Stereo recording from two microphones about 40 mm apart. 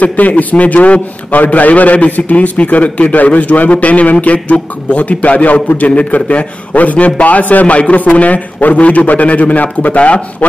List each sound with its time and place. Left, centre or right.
0.0 s a man's voice: left